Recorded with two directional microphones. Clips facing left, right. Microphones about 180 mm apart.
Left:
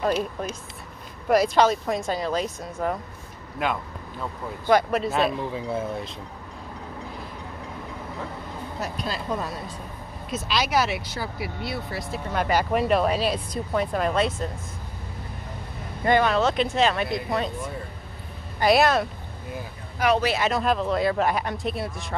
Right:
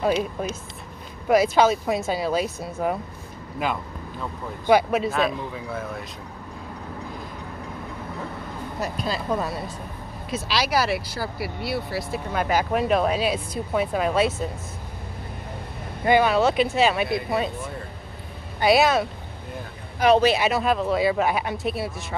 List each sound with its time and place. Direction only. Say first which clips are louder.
0.0 s speech: right 2 dB; 5° right (ahead or behind)
5.5 s speech: left 3 dB; 25° left (ahead or behind)
8.8 s speech: right 3 dB; centre (ahead or behind)
16.1 s speech: right 2 dB; 5° right (ahead or behind)
18.6 s speech: right 1 dB; centre (ahead or behind)
20.0 s speech: right 5 dB; 25° right (ahead or behind)
20.3 s speech: right 1 dB; 5° right (ahead or behind)